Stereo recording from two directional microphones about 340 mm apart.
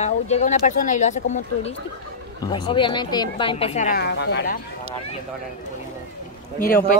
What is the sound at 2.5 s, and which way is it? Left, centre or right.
A woman's voice, centre.